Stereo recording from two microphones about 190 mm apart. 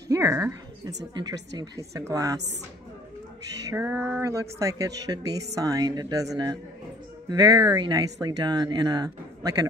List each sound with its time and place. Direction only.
0.1 s a woman's voice: 15° right (ahead or behind)
3.7 s speech: 15° right (ahead or behind)